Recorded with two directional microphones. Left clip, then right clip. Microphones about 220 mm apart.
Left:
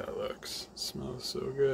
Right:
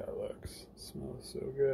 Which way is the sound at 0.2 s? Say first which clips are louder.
Left 5 dB; 10° left (ahead or behind).